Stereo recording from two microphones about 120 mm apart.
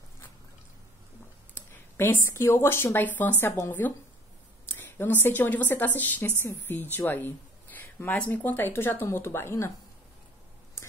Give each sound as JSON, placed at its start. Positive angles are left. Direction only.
{"t": 2.0, "sound": "a woman's voice", "side_deg": 20}